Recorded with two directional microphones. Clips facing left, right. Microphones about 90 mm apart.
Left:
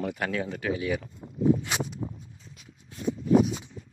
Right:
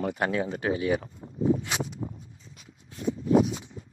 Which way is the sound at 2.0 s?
45° right (ahead or behind).